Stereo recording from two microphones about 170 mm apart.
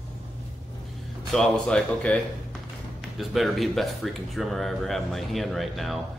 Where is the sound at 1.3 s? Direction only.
5° left (ahead or behind).